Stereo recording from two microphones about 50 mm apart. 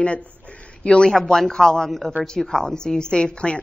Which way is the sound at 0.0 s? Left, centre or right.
Left.